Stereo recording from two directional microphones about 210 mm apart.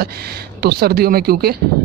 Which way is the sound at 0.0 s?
50° right (ahead or behind).